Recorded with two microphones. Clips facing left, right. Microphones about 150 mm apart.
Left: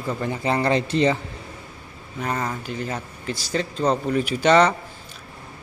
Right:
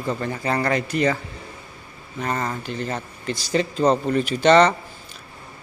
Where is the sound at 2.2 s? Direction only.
5° left (ahead or behind).